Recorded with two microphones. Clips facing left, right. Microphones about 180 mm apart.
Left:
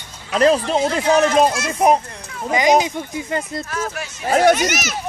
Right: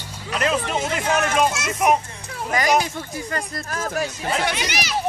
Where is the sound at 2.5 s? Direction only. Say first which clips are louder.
Left 5 dB; 20° left (ahead or behind).